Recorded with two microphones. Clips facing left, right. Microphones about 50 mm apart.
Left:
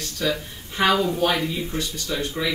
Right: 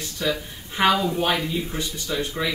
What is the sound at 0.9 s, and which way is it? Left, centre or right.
Speech, centre.